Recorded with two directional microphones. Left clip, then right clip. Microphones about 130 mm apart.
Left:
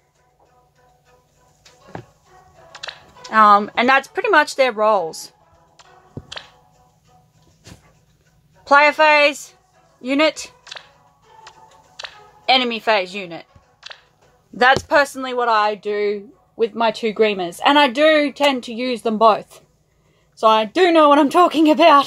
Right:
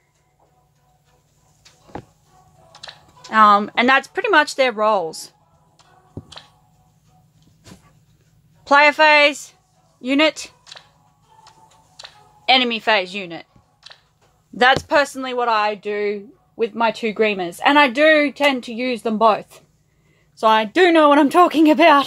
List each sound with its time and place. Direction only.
2.6 s music: 20° left (ahead or behind)
3.3 s speech: 25° right (ahead or behind)
6.2 s music: 20° left (ahead or behind)
8.6 s speech: 20° right (ahead or behind)
10.6 s a sound: 20° left (ahead or behind)
12.4 s speech: 15° right (ahead or behind)
13.7 s a sound: 20° left (ahead or behind)
14.6 s speech: 20° right (ahead or behind); by 19.6 s centre (ahead or behind)
20.3 s speech: 15° right (ahead or behind)